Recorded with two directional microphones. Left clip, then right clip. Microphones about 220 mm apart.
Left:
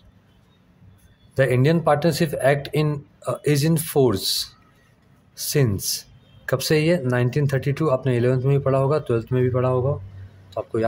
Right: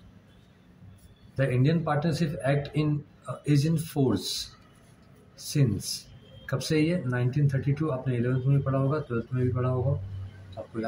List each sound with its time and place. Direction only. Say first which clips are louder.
1.3 s speech: left 9 dB; 50° left (ahead or behind)